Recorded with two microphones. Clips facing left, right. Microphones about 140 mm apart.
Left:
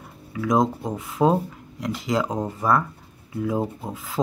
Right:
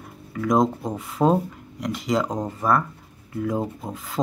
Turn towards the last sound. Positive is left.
turn(degrees=5)  # may be behind; listen again after turning